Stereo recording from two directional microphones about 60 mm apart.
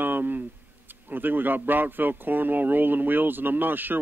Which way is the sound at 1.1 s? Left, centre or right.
Right.